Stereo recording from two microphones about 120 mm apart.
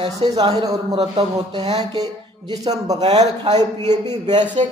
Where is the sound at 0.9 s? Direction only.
60° right (ahead or behind).